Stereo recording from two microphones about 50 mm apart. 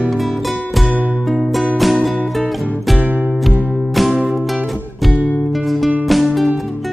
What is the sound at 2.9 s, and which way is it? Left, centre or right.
Music, right.